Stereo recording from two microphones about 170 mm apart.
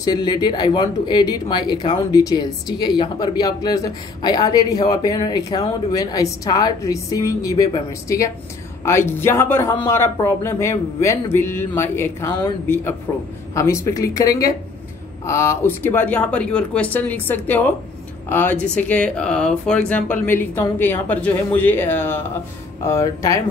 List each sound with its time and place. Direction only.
0.0 s speech: 25° left (ahead or behind)